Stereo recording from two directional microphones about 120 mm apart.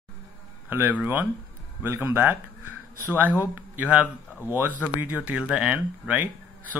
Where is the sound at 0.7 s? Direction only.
15° right (ahead or behind).